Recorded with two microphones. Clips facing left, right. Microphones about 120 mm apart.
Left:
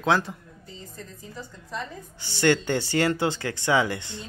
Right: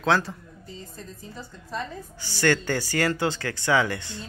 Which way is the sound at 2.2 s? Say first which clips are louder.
Left 1 dB; 20° left (ahead or behind).